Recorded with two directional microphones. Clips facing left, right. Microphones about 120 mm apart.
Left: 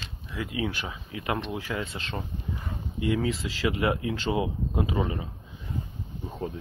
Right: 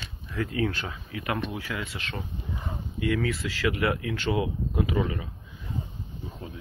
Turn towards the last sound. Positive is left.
turn(degrees=35)  # may be behind; listen again after turning